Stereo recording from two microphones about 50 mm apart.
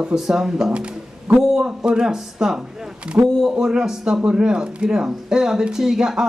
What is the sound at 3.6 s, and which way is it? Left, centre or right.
Speech, centre.